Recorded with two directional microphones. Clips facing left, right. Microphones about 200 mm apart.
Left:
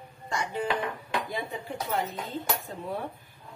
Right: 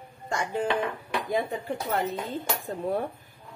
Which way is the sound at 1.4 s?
55° right (ahead or behind).